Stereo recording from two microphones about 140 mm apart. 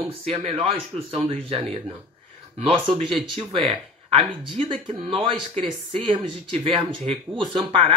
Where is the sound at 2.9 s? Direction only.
40° right (ahead or behind).